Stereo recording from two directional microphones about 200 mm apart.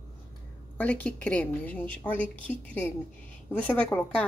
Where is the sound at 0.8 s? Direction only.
5° left (ahead or behind).